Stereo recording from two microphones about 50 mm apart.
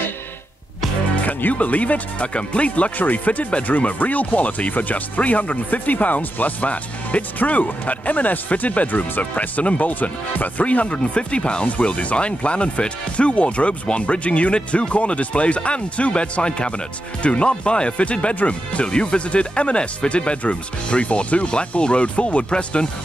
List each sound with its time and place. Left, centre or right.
1.1 s speech: left